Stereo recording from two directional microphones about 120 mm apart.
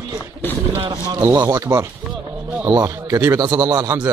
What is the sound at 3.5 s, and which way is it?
Speech, 35° right (ahead or behind).